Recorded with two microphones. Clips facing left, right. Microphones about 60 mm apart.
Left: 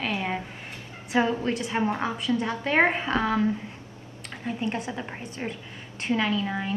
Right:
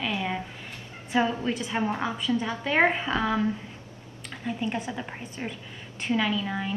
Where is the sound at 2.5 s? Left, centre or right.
Left.